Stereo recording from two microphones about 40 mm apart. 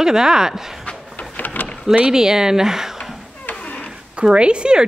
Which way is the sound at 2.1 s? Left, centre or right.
Centre.